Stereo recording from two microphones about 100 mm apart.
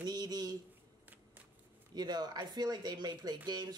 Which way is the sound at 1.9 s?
45° right (ahead or behind).